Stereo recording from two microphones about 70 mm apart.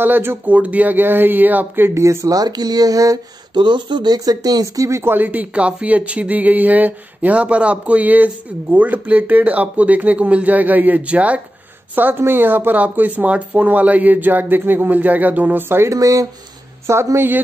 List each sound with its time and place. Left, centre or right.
0.0 s speech: right
2.0 s speech: right
3.5 s speech: right
4.8 s speech: right
5.1 s speech: right
15.9 s a woman's voice: right